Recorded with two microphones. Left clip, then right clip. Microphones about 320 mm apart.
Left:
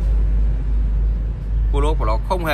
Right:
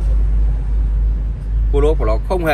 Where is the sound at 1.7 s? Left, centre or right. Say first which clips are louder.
Right 6 dB; centre.